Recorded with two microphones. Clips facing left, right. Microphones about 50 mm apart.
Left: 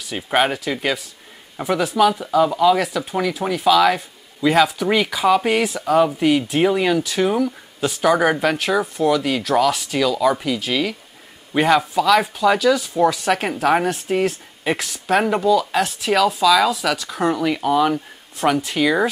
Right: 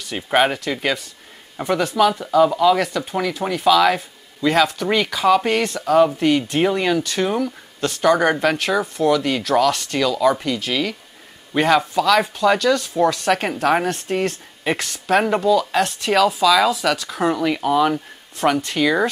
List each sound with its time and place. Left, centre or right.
0.0 s speech: centre